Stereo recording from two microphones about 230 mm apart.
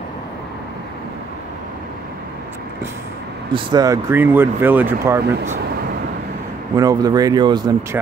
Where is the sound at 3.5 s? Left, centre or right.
Centre.